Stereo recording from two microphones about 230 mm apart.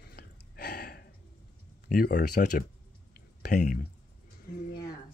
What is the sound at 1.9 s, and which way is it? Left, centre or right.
Speech, left.